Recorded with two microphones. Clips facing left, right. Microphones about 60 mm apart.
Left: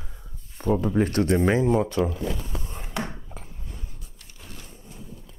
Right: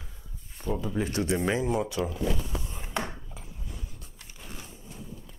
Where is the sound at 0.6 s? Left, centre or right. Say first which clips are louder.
Left 8 dB; left.